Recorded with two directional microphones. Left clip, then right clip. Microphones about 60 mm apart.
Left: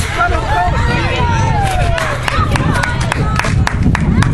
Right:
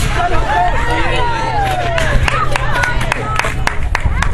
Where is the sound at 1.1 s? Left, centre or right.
Left.